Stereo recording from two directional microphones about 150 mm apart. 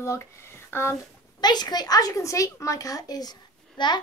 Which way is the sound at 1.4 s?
30° left (ahead or behind).